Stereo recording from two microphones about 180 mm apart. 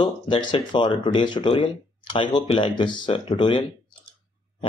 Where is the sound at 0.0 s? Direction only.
25° left (ahead or behind).